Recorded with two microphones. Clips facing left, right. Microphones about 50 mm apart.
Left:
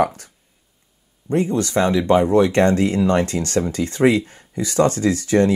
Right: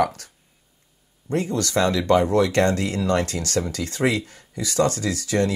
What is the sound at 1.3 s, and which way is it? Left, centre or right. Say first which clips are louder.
Speech: left 4 dB; left.